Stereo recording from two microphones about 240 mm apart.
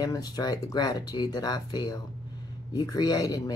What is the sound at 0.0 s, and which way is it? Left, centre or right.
Speech, centre.